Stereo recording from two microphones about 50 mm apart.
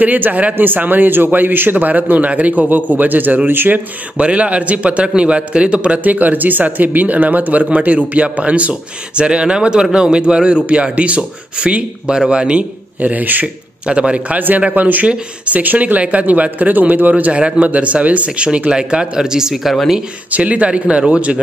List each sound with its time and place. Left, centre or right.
0.0 s a man's voice: right
4.2 s speech: right
6.0 s speech: right
13.0 s a man's voice: right
13.8 s a man's voice: right
20.2 s speech: right